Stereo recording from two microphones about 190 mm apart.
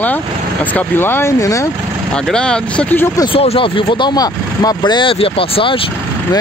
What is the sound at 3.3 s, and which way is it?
Speech, 30° left (ahead or behind).